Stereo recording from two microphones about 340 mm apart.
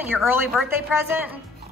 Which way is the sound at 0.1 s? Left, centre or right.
Centre.